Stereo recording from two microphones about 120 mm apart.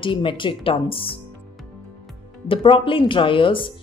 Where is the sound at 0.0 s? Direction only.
45° left (ahead or behind).